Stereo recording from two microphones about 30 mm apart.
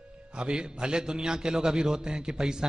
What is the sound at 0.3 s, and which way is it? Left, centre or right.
A man's voice, right.